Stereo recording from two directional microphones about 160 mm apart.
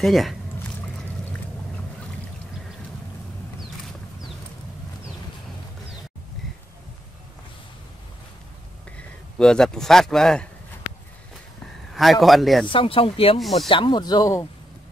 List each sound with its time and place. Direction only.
0.0 s speech: centre (ahead or behind)
8.9 s speech: 5° left (ahead or behind)
11.9 s speech: centre (ahead or behind)
12.6 s speech: 35° left (ahead or behind)
13.4 s speech: centre (ahead or behind)
13.7 s speech: 30° left (ahead or behind)